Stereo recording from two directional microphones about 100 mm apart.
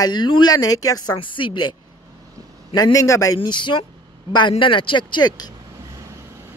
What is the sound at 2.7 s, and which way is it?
Speech, 35° left (ahead or behind).